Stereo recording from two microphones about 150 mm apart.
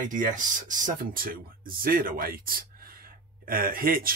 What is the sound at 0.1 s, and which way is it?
Speech, 60° right (ahead or behind).